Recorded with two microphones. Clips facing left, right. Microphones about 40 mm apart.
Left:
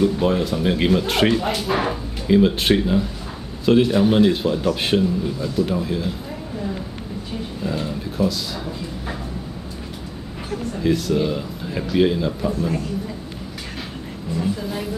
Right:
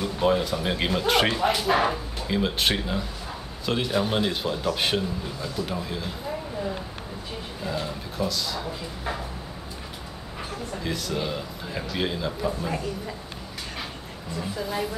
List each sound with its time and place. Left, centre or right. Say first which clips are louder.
0.0 s speech: left 5 dB; centre
7.6 s a sound: left 4 dB; centre
10.8 s speech: left 10 dB; centre
14.4 s speech: left 3 dB; centre